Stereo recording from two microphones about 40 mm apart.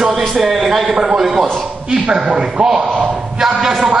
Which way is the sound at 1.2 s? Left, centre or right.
Centre.